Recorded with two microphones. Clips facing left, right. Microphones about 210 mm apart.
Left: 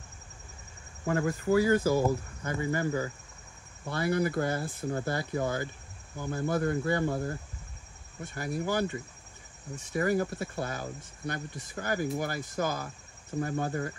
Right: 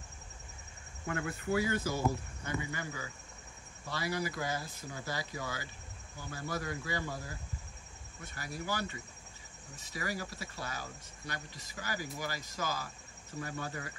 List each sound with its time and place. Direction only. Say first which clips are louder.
1.0 s speech: left 8 dB; 40° left (ahead or behind); by 7.3 s 55° left (ahead or behind)
8.4 s speech: left 8 dB; 55° left (ahead or behind)
9.9 s speech: left 12 dB; 55° left (ahead or behind)